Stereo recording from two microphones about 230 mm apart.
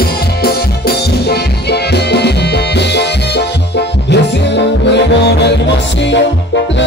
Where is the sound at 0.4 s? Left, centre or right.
Left.